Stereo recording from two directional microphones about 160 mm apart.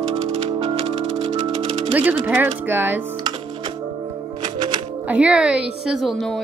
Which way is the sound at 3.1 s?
25° right (ahead or behind).